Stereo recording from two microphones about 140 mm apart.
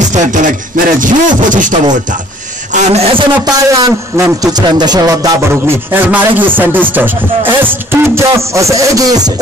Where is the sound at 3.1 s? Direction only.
30° right (ahead or behind).